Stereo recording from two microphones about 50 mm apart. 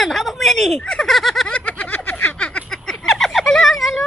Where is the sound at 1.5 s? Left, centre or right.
Left.